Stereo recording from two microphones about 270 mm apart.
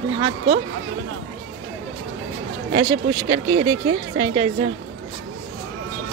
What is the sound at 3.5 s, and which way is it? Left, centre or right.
Speech, right.